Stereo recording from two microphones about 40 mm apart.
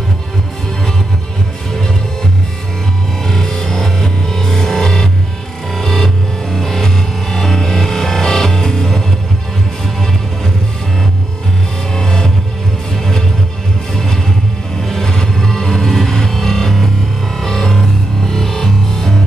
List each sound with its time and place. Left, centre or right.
3.3 s music: centre
11.9 s music: centre
14.8 s music: centre